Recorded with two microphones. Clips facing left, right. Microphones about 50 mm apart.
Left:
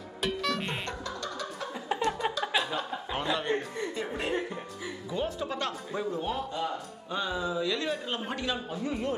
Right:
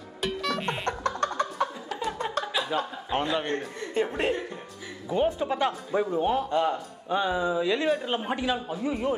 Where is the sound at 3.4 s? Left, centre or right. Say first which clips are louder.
Even; centre.